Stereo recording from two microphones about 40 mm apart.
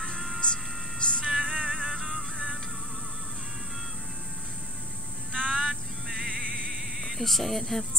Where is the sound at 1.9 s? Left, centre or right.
Centre.